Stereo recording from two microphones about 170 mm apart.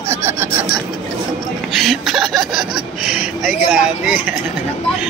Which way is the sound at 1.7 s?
Centre (ahead or behind).